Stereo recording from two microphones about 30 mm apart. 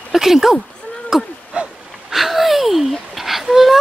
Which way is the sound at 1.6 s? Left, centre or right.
Right.